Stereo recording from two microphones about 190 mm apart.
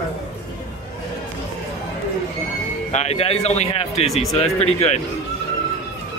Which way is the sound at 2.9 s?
35° left (ahead or behind).